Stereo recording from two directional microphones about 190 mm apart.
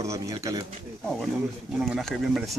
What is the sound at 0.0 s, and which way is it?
Speech, 15° right (ahead or behind).